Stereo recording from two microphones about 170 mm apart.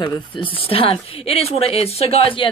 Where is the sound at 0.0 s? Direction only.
25° left (ahead or behind).